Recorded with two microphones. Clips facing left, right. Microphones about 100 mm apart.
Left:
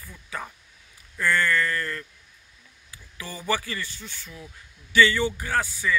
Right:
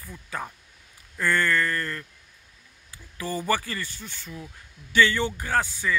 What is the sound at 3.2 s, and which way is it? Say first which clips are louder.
Speech: right 2 dB; 50° right (ahead or behind).